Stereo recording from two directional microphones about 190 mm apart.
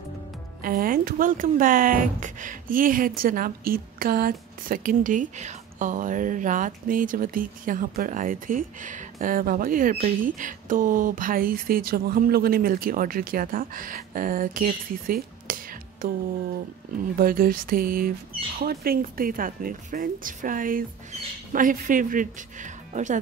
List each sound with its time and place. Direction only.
0.6 s speech: 50° right (ahead or behind)
17.2 s speech: 50° right (ahead or behind)